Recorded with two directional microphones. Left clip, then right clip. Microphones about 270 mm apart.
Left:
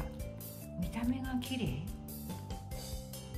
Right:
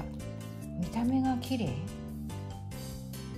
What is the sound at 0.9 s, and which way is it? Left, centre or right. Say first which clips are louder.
Speech: right 8 dB; centre.